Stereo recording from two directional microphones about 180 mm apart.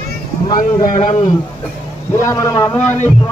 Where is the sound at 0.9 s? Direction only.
40° left (ahead or behind).